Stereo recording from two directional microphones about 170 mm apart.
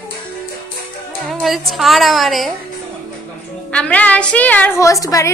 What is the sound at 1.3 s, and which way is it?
A woman's voice, centre (ahead or behind).